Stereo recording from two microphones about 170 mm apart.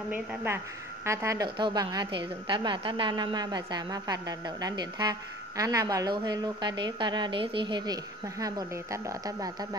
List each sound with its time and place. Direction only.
0.1 s a woman's voice: 10° right (ahead or behind)